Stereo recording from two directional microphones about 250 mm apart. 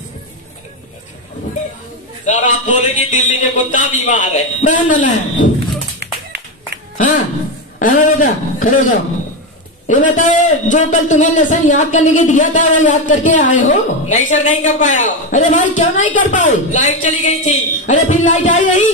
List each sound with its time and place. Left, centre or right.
2.2 s a man's voice: left
5.9 s clapping: right
7.8 s a man's voice: left
9.8 s a man's voice: left